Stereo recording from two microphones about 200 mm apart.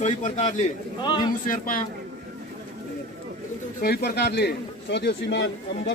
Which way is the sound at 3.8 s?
50° left (ahead or behind).